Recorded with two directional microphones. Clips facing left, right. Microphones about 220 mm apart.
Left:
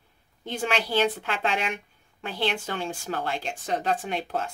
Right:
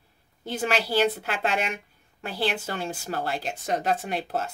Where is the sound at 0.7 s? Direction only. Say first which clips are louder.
Right 1 dB; 40° right (ahead or behind).